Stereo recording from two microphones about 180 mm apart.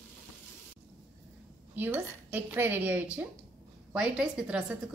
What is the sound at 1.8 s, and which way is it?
A woman's voice, 10° right (ahead or behind).